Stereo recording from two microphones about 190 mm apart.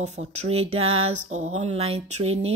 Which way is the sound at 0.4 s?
35° right (ahead or behind).